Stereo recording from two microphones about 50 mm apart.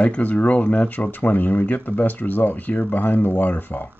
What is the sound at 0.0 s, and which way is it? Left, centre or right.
Speech, left.